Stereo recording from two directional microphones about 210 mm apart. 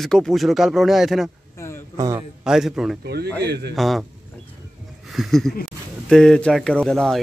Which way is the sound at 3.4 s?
50° right (ahead or behind).